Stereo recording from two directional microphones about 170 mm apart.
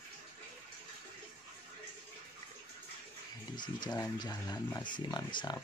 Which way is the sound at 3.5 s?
25° left (ahead or behind).